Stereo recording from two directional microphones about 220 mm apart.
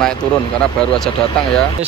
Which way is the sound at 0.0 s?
5° left (ahead or behind).